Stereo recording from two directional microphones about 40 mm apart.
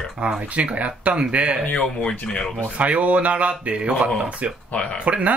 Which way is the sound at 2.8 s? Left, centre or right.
Right.